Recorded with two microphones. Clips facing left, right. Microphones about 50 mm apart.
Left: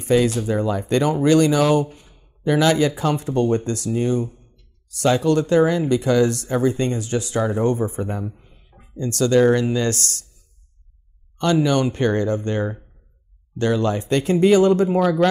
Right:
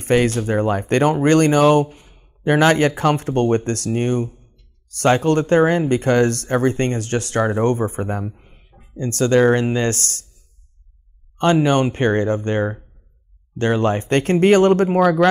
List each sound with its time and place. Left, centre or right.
0.0 s speech: right
1.9 s speech: right
11.3 s speech: right